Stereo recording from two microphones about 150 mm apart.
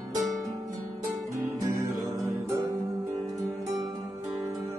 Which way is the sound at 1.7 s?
20° right (ahead or behind).